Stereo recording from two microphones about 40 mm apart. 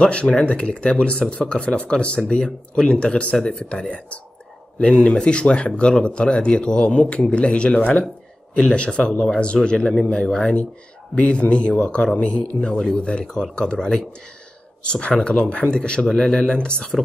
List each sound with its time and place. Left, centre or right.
0.0 s speech: left
5.0 s speech: left